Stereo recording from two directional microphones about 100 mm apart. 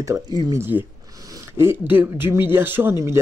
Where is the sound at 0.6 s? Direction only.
20° right (ahead or behind).